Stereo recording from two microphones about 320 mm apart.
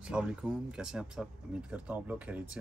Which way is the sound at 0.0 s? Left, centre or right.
Centre.